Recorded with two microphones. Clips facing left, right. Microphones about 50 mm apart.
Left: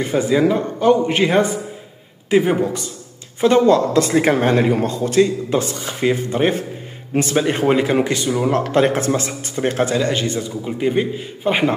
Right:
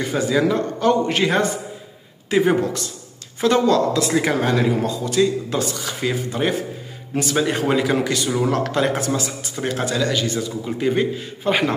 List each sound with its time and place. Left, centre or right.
0.0 s a man's voice: left
3.3 s speech: left
7.3 s a man's voice: left
10.6 s a man's voice: centre